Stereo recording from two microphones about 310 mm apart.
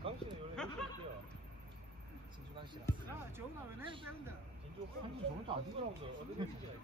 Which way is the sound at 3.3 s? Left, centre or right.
Centre.